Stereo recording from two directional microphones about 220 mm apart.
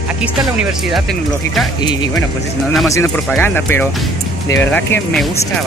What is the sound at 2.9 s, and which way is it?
Speech, 10° left (ahead or behind).